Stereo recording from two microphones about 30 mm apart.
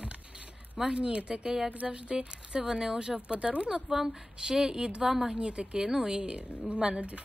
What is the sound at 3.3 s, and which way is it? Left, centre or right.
Speech, right.